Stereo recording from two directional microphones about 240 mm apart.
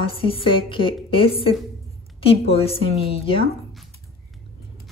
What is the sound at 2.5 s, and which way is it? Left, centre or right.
Speech, left.